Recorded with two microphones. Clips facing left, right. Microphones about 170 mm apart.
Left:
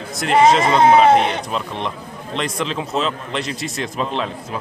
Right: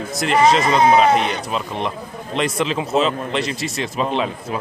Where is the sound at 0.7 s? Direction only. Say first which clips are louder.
Left 2 dB; 30° left (ahead or behind).